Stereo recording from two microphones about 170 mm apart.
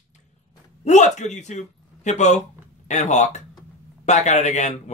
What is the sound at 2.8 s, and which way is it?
Speech, 45° left (ahead or behind).